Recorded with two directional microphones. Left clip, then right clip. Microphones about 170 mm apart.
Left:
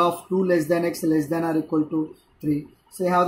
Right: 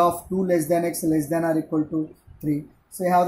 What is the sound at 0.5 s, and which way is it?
Speech, 10° right (ahead or behind).